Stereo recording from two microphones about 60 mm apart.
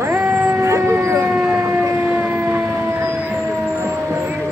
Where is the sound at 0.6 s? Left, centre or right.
Right.